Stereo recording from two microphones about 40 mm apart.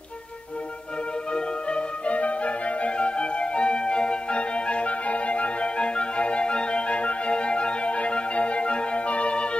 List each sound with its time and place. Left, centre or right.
1.3 s music: left